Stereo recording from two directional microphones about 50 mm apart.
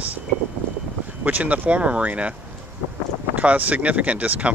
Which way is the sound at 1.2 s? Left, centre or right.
Right.